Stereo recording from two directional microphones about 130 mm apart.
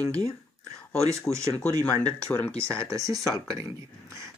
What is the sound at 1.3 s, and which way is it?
Speech, 25° left (ahead or behind).